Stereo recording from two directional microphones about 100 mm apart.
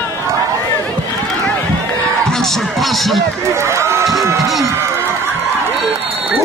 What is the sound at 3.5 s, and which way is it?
Speech, 30° right (ahead or behind).